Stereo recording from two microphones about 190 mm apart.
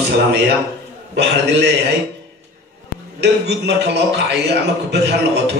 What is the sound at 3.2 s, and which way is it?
A man's voice, 60° right (ahead or behind).